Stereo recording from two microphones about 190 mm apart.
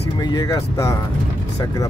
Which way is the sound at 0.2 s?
20° left (ahead or behind).